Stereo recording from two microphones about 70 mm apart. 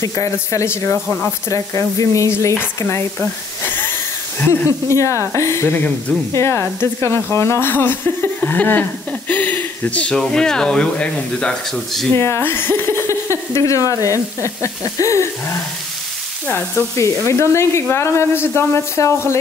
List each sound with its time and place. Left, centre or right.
0.0 s speech: left
3.2 s speech: left
4.6 s speech: left
5.7 s speech: left
6.3 s speech: left; by 11.8 s centre
12.1 s speech: left
13.3 s speech: left
16.9 s speech: left